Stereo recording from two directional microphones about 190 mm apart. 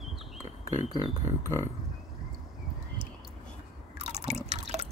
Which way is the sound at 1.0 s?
15° left (ahead or behind).